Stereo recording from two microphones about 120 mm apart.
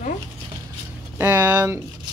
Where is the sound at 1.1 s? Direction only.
15° right (ahead or behind).